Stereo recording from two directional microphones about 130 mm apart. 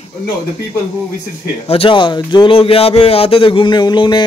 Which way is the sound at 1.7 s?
45° left (ahead or behind).